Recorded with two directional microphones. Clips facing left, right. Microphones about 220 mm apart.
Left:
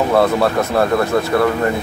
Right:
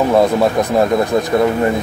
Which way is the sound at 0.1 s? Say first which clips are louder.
Right 2 dB; 15° right (ahead or behind).